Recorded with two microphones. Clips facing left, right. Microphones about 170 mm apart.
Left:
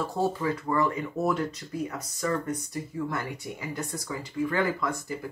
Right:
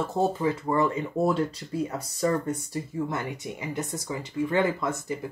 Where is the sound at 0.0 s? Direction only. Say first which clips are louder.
Right 2 dB; 25° right (ahead or behind).